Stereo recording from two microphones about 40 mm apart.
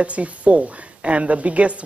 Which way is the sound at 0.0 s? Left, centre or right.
Right.